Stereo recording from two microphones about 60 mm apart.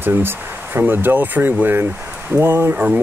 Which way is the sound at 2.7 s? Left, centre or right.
Right.